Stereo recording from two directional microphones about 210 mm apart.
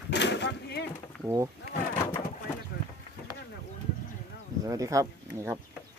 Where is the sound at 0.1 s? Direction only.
55° left (ahead or behind).